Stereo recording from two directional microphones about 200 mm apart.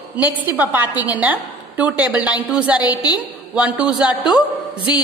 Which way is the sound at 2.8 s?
20° left (ahead or behind).